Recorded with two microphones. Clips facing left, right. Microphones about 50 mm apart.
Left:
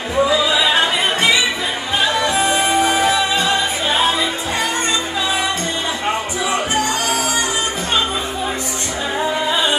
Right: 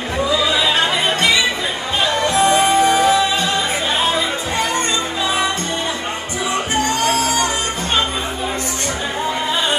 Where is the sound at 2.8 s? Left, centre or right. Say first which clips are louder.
Right 2 dB; left.